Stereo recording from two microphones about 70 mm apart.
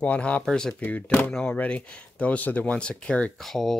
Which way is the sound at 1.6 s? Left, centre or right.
Left.